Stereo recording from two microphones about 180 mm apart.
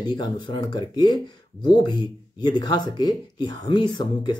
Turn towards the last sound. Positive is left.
turn(degrees=25)  # may be behind; listen again after turning